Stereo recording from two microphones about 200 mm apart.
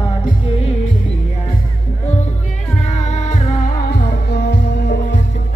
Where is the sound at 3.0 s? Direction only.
35° left (ahead or behind).